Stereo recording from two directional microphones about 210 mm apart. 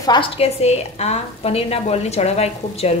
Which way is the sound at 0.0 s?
20° left (ahead or behind).